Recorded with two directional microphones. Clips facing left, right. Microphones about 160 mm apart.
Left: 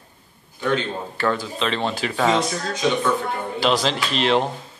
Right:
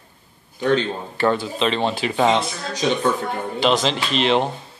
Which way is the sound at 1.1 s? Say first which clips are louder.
Right 4 dB; 25° right (ahead or behind).